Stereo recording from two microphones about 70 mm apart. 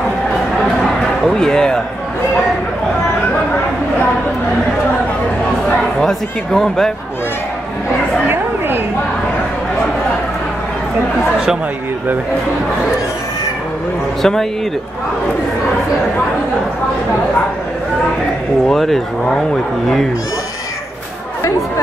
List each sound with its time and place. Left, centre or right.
1.2 s speech: centre
5.9 s speech: centre
8.3 s a sound: right
14.2 s speech: centre
18.7 s speech: centre